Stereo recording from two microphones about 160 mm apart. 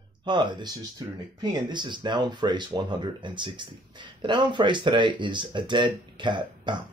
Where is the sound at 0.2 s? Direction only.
30° right (ahead or behind).